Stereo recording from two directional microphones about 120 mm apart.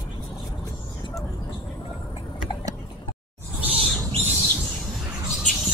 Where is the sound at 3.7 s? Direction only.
55° right (ahead or behind).